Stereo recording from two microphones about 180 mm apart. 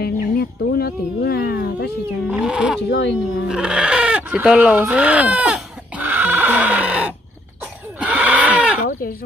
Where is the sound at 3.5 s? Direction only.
5° right (ahead or behind).